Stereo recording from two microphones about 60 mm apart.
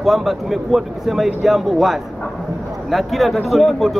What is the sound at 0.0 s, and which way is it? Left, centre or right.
Speech, centre.